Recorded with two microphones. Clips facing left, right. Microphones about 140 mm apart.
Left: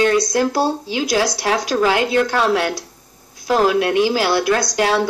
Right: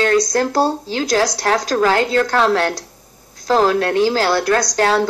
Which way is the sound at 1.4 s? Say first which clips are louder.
Right 2 dB; 45° right (ahead or behind).